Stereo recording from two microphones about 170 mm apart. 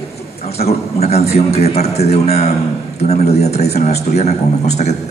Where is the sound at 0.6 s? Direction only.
40° left (ahead or behind).